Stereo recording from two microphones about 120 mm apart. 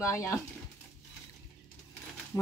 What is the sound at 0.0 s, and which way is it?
Speech, 25° left (ahead or behind).